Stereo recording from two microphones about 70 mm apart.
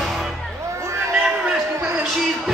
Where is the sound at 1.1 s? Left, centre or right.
Centre.